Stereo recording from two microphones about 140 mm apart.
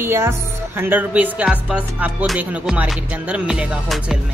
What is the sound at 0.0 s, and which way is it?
Speech, 15° right (ahead or behind).